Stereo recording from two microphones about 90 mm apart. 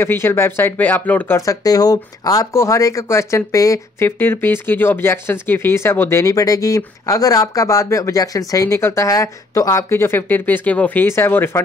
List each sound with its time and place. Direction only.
0.0 s speech: 25° left (ahead or behind)
1.3 s speech: 40° left (ahead or behind)
4.2 s speech: 25° left (ahead or behind)